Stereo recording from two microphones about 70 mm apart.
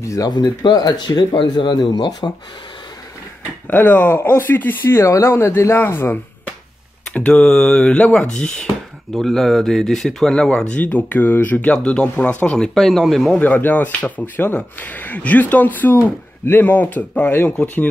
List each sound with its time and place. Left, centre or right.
0.0 s speech: left
0.3 s speech: left
3.7 s a man's voice: left
7.1 s speech: centre
11.7 s speech: centre
13.4 s speech: left